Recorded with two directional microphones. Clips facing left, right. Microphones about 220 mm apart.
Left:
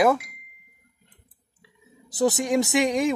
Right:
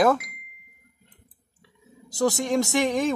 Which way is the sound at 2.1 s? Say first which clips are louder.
Left 1 dB; 20° left (ahead or behind).